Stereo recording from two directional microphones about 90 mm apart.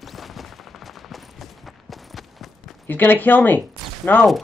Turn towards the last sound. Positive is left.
turn(degrees=20)  # may be behind; listen again after turning